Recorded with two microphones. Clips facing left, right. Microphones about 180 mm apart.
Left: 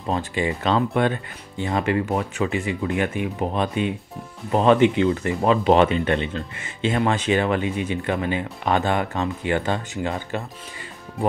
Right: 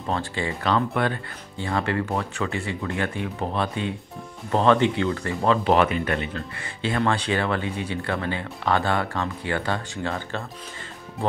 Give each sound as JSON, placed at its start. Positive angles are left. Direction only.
{"t": 0.1, "sound": "speech", "side_deg": 15}